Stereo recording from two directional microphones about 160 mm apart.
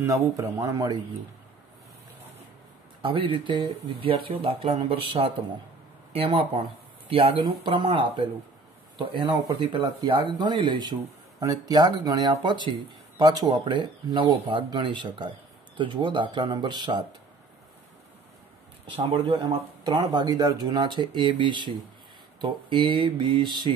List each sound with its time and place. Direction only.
0.0 s speech: 20° right (ahead or behind)
3.0 s speech: 30° right (ahead or behind)
18.9 s speech: 35° right (ahead or behind)